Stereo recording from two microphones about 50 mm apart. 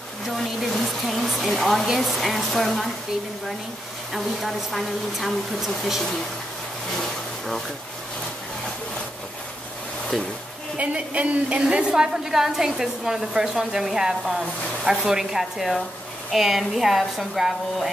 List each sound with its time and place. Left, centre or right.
0.4 s a woman's voice: centre
4.1 s a woman's voice: centre
7.0 s vehicle: centre
10.1 s a woman's voice: centre
10.8 s a woman's voice: right
11.9 s a woman's voice: centre